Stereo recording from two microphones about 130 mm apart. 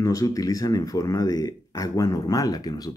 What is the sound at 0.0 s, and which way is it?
Speech, 25° left (ahead or behind).